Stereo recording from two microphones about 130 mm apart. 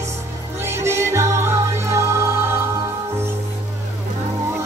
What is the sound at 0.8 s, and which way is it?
Music, 20° right (ahead or behind).